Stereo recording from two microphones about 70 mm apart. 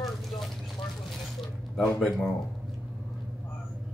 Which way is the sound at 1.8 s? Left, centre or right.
Centre.